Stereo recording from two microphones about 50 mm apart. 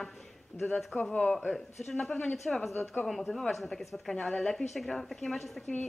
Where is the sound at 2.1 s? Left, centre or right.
Left.